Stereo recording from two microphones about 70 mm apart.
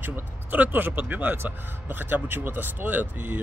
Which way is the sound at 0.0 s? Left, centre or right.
Right.